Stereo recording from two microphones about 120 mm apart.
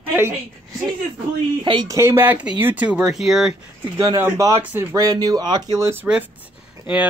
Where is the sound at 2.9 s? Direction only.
5° right (ahead or behind).